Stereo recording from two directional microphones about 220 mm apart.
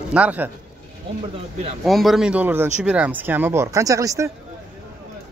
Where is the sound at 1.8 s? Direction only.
Centre (ahead or behind).